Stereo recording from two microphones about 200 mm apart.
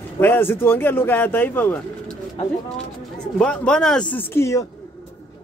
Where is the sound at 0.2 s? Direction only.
10° left (ahead or behind).